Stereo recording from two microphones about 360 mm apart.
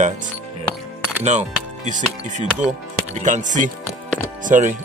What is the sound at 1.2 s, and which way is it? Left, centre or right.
Speech, centre.